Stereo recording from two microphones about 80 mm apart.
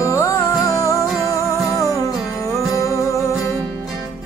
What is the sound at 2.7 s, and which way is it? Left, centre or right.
Music, left.